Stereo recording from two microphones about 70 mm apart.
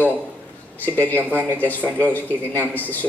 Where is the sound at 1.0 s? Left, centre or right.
Left.